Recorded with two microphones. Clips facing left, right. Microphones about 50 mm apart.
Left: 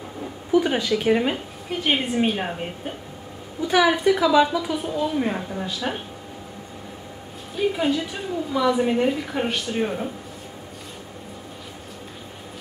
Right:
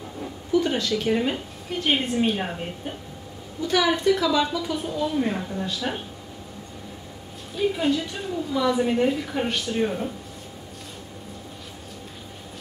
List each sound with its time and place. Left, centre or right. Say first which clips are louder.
0.5 s speech: left 3 dB; centre
1.8 s speech: left 1 dB; centre
3.6 s speech: left 3 dB; centre
7.5 s speech: left 1 dB; centre